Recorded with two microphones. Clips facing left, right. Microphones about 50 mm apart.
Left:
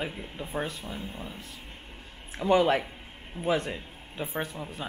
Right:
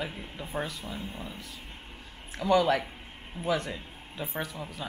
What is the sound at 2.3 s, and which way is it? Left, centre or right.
Speech, left.